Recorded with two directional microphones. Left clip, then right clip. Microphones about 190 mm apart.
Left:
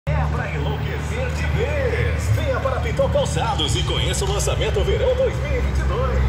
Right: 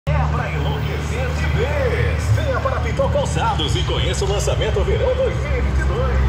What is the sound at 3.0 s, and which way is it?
Speech, 50° left (ahead or behind).